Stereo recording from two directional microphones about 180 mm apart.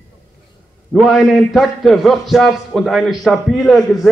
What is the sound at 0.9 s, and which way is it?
A man's voice, centre (ahead or behind).